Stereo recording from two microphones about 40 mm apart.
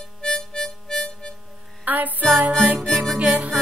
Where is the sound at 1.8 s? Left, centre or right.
Right.